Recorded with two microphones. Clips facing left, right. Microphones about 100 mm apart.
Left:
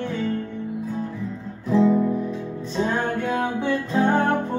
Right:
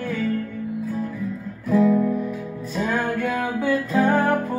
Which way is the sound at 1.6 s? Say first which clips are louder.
Even; 25° left (ahead or behind).